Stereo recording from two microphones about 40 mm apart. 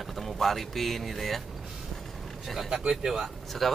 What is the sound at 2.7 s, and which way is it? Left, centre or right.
Speech, centre.